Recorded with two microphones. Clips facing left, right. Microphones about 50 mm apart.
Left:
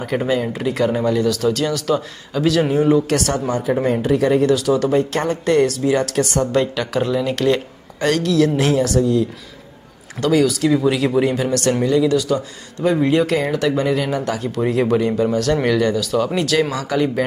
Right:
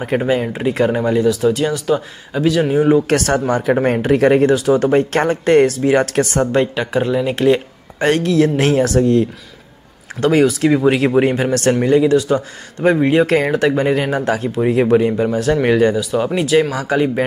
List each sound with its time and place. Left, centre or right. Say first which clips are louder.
0.1 s speech: right 2 dB; right
1.3 s speech: right 3 dB; centre
3.1 s speech: right 4 dB; right; by 7.6 s centre
8.0 s speech: right 2 dB; right
10.2 s speech: right 3 dB; right
16.0 s speech: right 1 dB; centre